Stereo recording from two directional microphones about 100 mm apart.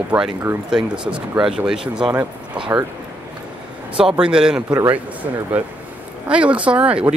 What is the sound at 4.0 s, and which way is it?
Speech, 10° right (ahead or behind).